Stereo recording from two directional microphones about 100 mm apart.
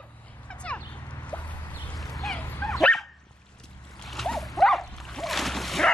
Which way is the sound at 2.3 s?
20° left (ahead or behind).